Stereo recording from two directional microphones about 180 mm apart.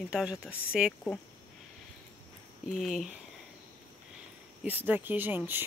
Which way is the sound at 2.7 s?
Centre (ahead or behind).